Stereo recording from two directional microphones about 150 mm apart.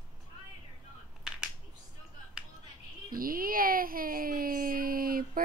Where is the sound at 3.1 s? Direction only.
75° right (ahead or behind).